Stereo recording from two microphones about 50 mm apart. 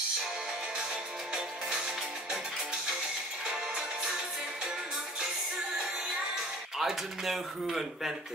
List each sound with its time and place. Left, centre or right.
1.3 s music: centre
6.8 s speech: centre